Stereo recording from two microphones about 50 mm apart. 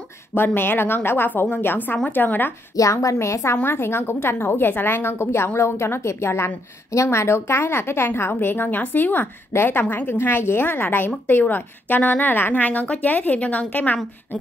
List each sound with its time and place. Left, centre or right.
0.3 s a woman's voice: left
2.8 s a woman's voice: left
3.5 s a woman's voice: left
9.5 s a woman's voice: left
12.6 s a woman's voice: left